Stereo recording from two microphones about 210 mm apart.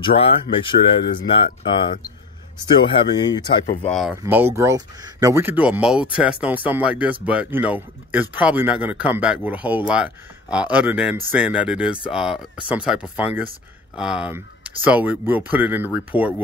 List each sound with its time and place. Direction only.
0.0 s speech: 25° left (ahead or behind)
3.8 s speech: centre (ahead or behind)
4.1 s speech: 10° right (ahead or behind)